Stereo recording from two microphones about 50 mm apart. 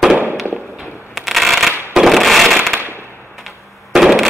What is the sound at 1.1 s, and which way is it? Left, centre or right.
Shuffling cards, centre.